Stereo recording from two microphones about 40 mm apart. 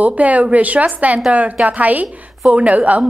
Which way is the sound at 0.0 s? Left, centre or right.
Right.